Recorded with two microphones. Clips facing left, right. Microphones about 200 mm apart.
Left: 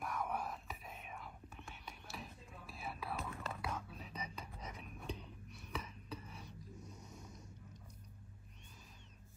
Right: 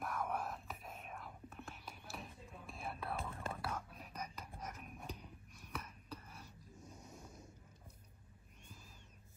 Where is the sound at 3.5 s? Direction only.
5° right (ahead or behind).